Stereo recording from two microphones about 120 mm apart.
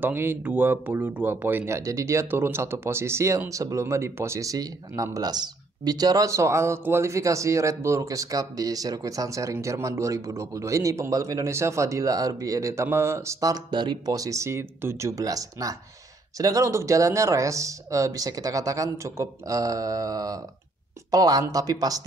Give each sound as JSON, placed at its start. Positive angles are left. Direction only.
{"t": 0.0, "sound": "speech", "side_deg": -15}